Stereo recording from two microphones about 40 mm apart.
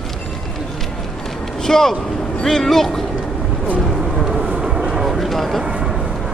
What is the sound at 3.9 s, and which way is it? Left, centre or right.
Vehicle, centre.